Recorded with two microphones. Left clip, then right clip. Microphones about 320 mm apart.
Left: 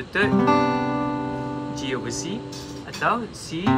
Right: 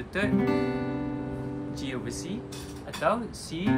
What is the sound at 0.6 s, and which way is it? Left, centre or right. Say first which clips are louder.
Music: left 8 dB; left.